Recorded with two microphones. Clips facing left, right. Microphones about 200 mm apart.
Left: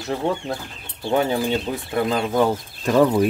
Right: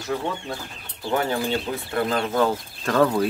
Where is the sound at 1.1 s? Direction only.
20° left (ahead or behind).